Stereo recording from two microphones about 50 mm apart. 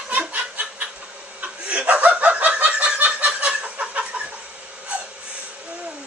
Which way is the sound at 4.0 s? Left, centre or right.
Centre.